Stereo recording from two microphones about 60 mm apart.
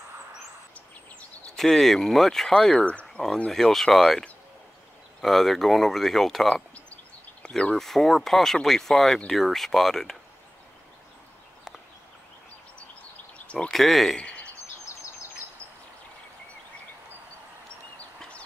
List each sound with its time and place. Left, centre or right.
1.6 s speech: centre
2.7 s speech: left
3.4 s speech: centre
5.2 s speech: centre
7.4 s speech: centre
7.7 s speech: centre
13.7 s speech: centre
14.1 s a sound: centre